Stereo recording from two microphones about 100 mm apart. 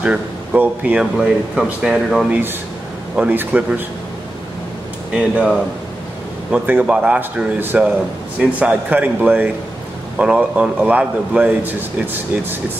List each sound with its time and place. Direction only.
0.0 s speech: 10° right (ahead or behind)
3.2 s speech: 15° right (ahead or behind)
5.1 s speech: 10° right (ahead or behind)